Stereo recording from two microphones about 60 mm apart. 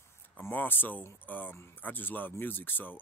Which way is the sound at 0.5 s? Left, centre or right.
Left.